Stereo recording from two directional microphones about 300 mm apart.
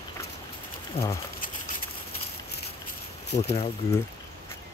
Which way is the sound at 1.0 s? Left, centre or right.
Left.